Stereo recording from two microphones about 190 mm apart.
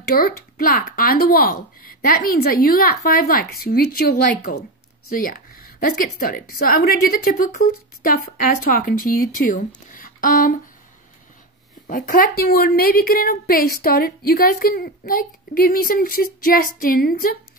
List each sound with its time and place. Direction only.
0.0 s a woman's voice: 50° left (ahead or behind)
5.8 s a woman's voice: 50° left (ahead or behind)
11.9 s a woman's voice: 45° left (ahead or behind)